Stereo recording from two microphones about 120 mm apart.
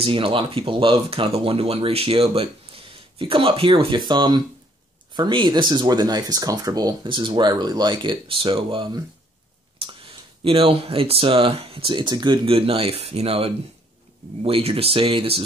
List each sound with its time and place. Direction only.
0.0 s speech: 45° right (ahead or behind)
10.4 s speech: 50° right (ahead or behind)